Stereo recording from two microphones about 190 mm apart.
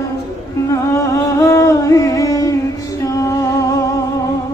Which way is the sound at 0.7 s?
15° left (ahead or behind).